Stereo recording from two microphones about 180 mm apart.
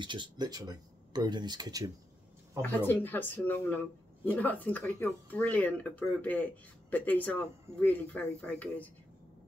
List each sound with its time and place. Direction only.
0.0 s speech: 25° right (ahead or behind)
2.6 s speech: 10° left (ahead or behind)